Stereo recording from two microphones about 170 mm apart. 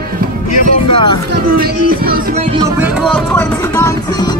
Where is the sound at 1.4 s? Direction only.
60° right (ahead or behind).